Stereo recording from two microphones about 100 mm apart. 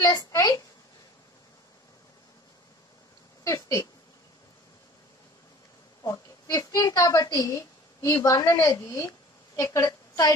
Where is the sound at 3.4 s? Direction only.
35° left (ahead or behind).